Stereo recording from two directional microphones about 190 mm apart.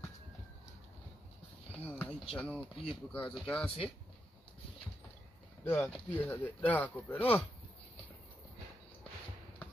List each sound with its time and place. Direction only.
1.7 s a sound: 10° left (ahead or behind)
2.3 s speech: 5° left (ahead or behind)
5.6 s speech: 10° left (ahead or behind)